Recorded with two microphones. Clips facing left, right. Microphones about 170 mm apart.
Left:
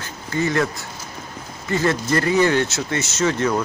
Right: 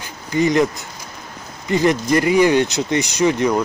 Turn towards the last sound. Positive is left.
turn(degrees=-15)  # may be behind; listen again after turning